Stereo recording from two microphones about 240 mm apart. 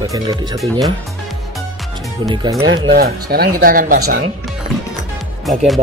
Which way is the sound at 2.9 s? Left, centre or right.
Right.